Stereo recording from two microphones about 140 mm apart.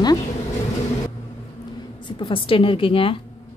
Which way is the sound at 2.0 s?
35° left (ahead or behind).